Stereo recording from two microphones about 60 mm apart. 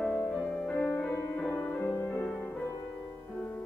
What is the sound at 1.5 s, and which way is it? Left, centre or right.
Music, left.